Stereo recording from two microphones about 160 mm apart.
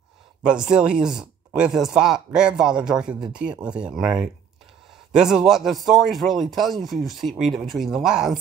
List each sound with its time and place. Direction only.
0.4 s speech: 5° right (ahead or behind)